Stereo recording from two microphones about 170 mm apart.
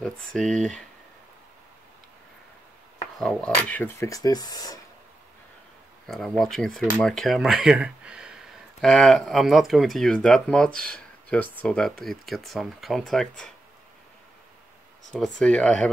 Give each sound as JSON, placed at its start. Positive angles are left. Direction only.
{"t": 0.0, "sound": "speech", "side_deg": 0}
{"t": 3.2, "sound": "speech", "side_deg": 5}
{"t": 6.0, "sound": "speech", "side_deg": 0}
{"t": 15.0, "sound": "speech", "side_deg": 0}